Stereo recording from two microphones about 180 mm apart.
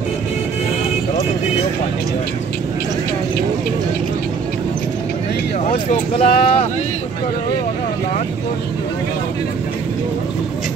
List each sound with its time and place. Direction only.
5.9 s speech: 30° left (ahead or behind)